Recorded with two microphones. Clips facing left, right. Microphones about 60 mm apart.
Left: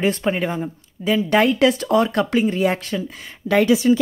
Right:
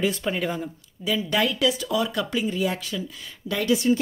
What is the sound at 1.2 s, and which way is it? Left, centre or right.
Speech, left.